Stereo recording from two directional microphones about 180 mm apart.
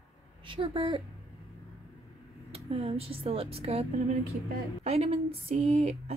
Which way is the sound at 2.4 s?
35° right (ahead or behind).